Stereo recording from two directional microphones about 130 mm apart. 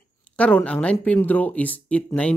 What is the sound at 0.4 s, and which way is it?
Speech, 10° left (ahead or behind).